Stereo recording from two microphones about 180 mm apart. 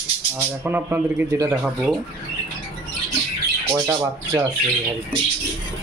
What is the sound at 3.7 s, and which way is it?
Speech, 20° right (ahead or behind).